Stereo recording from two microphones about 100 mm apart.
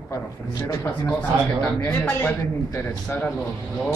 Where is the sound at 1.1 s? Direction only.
10° left (ahead or behind).